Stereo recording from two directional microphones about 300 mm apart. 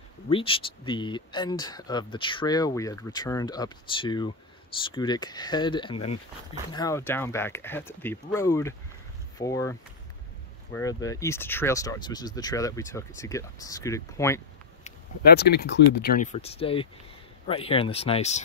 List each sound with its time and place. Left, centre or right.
0.3 s speech: centre
14.8 s speech: left